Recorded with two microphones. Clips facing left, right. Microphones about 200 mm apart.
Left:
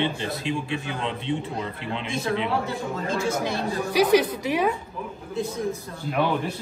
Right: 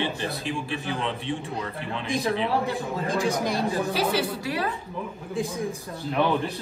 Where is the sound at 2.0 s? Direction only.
15° right (ahead or behind).